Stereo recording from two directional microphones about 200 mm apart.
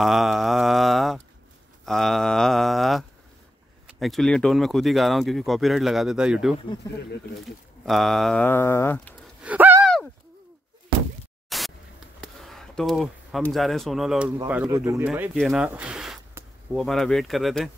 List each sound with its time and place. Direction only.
0.0 s a sound: centre (ahead or behind)
4.0 s speech: centre (ahead or behind)
6.8 s speech: 15° left (ahead or behind)
7.8 s speech: centre (ahead or behind)
9.4 s gasp: 10° right (ahead or behind)
11.4 s a sound: centre (ahead or behind)
14.7 s speech: 15° right (ahead or behind); by 17.6 s centre (ahead or behind)